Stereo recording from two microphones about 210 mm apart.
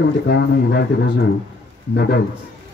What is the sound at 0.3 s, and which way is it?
Speech, 50° left (ahead or behind).